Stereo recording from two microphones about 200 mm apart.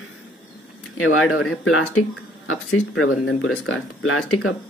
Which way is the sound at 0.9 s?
90° left.